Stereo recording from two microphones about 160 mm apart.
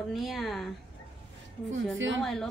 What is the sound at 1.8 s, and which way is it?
Speech, 5° left (ahead or behind).